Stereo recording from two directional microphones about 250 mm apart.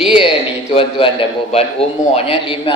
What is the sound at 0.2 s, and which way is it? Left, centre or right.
A man's voice, left.